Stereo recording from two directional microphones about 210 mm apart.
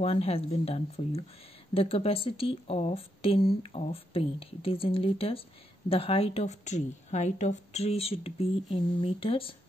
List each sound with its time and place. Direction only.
0.0 s speech: 30° left (ahead or behind)